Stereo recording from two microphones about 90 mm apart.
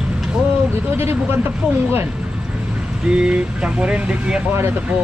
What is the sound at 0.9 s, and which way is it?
Speech, 25° right (ahead or behind).